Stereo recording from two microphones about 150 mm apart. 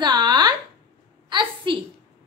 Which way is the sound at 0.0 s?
30° right (ahead or behind).